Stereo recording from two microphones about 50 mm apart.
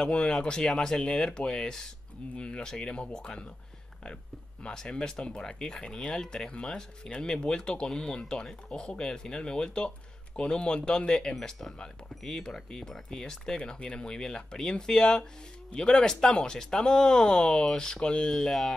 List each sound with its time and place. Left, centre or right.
0.0 s speech: centre
4.6 s speech: centre